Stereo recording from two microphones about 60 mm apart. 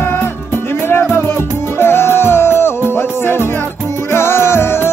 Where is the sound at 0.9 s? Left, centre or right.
Left.